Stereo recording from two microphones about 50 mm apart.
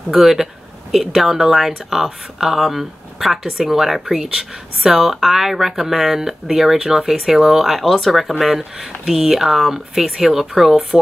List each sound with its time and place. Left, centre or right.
0.1 s speech: centre